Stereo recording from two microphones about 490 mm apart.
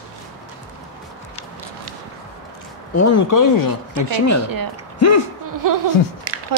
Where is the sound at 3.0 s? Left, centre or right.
Left.